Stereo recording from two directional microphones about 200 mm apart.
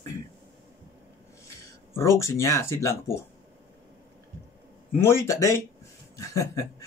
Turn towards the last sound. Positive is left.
turn(degrees=15)  # may be behind; listen again after turning